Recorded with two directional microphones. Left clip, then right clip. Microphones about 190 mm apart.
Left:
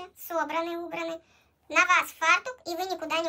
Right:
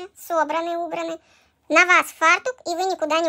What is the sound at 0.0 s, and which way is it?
A child's voice, 20° right (ahead or behind).